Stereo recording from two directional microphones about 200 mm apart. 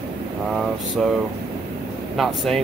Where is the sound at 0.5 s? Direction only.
Centre (ahead or behind).